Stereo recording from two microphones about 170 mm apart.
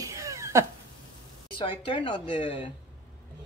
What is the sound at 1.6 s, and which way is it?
Speech, 30° left (ahead or behind).